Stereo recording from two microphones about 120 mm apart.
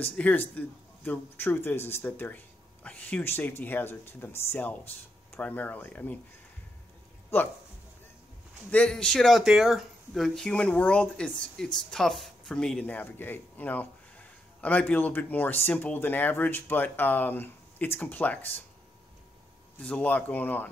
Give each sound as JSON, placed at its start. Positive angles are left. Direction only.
{"t": 0.1, "sound": "speech", "side_deg": 10}
{"t": 7.3, "sound": "speech", "side_deg": 20}
{"t": 8.6, "sound": "speech", "side_deg": 10}
{"t": 19.8, "sound": "speech", "side_deg": 10}